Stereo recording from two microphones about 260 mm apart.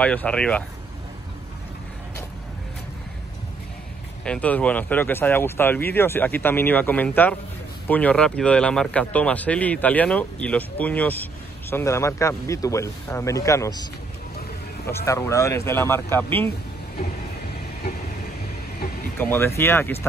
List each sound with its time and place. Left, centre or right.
0.0 s a man's voice: centre
4.2 s a man's voice: centre
14.9 s speech: centre
19.1 s speech: centre